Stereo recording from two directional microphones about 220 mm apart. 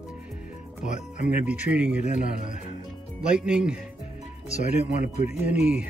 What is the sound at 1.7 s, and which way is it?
Speech, 5° right (ahead or behind).